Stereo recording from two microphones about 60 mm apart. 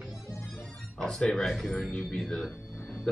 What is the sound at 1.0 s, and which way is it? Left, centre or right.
Speech, centre.